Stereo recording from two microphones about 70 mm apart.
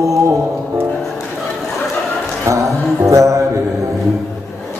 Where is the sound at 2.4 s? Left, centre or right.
Right.